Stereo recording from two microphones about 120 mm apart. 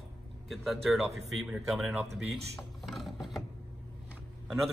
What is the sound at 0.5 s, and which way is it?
Speech, centre (ahead or behind).